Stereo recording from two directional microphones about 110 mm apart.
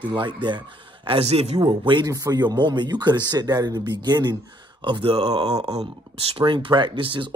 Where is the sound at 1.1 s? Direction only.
65° right (ahead or behind).